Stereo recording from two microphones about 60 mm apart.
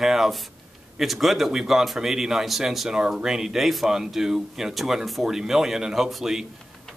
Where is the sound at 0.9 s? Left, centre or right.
Centre.